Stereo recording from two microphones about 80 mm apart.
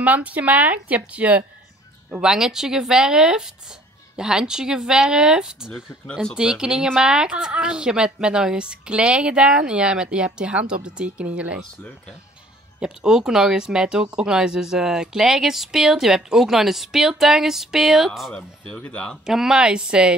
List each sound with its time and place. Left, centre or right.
0.0 s speech: centre
12.8 s speech: centre
18.7 s speech: centre
19.2 s speech: centre